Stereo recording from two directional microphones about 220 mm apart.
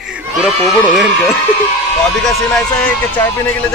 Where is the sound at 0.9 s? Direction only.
Centre (ahead or behind).